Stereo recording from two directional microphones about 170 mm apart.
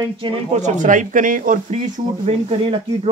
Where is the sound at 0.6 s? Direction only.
45° right (ahead or behind).